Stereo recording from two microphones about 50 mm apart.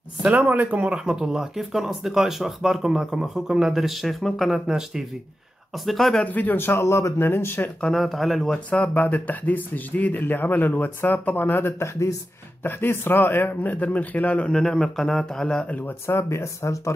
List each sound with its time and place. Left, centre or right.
0.2 s speech: right
1.0 s speech: centre
5.9 s speech: centre
6.2 s speech: left
6.6 s speech: left
7.2 s speech: left
7.9 s speech: centre
8.6 s speech: left
11.8 s speech: left
12.6 s speech: left
14.5 s a man's voice: centre
16.3 s speech: left